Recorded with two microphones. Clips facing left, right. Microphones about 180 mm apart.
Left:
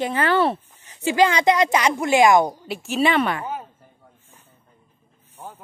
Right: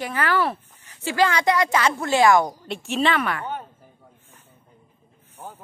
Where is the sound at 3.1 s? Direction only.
25° left (ahead or behind).